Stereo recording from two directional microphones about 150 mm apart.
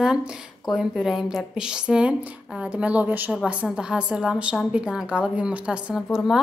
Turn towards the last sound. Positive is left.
turn(degrees=-5)  # may be behind; listen again after turning